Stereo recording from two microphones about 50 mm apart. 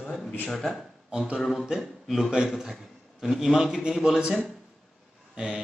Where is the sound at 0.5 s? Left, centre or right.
Centre.